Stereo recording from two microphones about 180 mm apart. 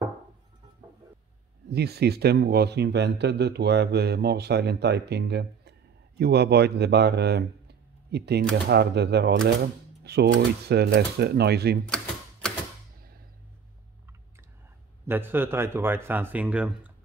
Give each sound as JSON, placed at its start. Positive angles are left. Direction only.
{"t": 1.7, "sound": "speech", "side_deg": -65}
{"t": 15.0, "sound": "speech", "side_deg": -10}